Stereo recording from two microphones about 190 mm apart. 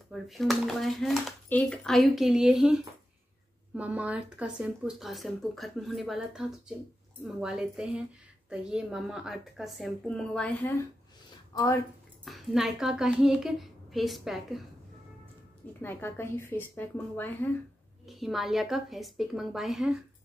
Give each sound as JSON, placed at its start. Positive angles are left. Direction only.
{"t": 0.1, "sound": "speech", "side_deg": 0}
{"t": 12.3, "sound": "speech", "side_deg": 0}
{"t": 15.8, "sound": "speech", "side_deg": 10}
{"t": 18.0, "sound": "speech", "side_deg": 0}